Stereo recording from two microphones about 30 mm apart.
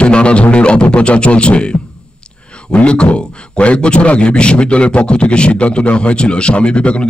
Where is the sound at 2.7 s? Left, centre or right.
Left.